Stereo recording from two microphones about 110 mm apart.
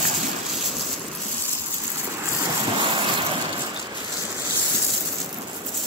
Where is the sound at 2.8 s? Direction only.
45° right (ahead or behind).